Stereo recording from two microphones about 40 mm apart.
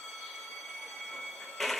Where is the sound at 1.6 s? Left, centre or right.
Centre.